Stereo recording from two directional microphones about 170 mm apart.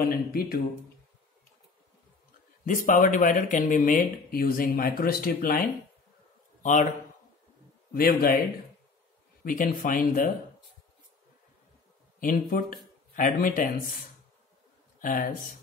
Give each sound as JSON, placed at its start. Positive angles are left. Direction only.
{"t": 0.0, "sound": "speech", "side_deg": 60}
{"t": 2.6, "sound": "speech", "side_deg": 50}
{"t": 6.6, "sound": "a man's voice", "side_deg": 45}
{"t": 7.9, "sound": "speech", "side_deg": 60}
{"t": 9.4, "sound": "speech", "side_deg": 55}
{"t": 12.2, "sound": "speech", "side_deg": 55}
{"t": 15.0, "sound": "speech", "side_deg": 50}